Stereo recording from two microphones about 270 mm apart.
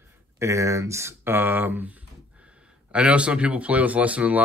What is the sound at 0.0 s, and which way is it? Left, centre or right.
Speech, centre.